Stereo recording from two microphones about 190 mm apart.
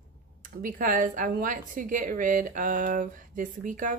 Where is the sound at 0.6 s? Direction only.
45° right (ahead or behind).